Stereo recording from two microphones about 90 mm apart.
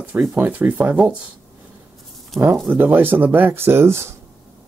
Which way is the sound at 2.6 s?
20° right (ahead or behind).